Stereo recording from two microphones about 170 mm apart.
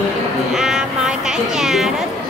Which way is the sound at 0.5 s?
5° right (ahead or behind).